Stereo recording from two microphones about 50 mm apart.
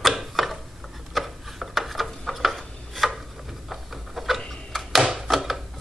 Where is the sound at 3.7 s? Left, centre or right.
Centre.